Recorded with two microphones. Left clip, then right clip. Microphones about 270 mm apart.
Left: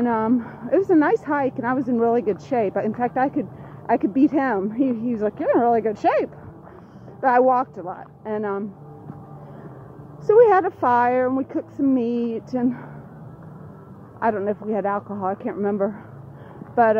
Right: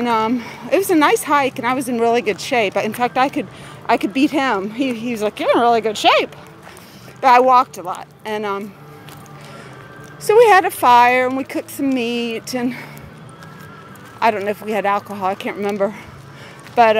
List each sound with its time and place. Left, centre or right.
0.0 s speech: right
10.2 s speech: right
12.1 s speech: centre
12.5 s speech: right
14.2 s speech: right